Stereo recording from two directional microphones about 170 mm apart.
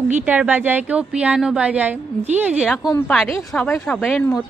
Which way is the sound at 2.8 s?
15° left (ahead or behind).